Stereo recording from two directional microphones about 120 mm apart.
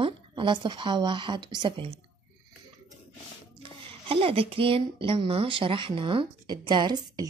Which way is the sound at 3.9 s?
50° right (ahead or behind).